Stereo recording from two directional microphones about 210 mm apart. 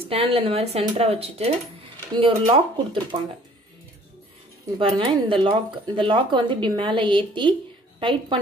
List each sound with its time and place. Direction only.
0.1 s speech: 25° right (ahead or behind)
4.7 s speech: 25° right (ahead or behind)